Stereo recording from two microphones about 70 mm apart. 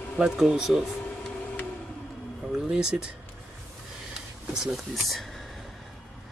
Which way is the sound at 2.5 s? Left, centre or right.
Centre.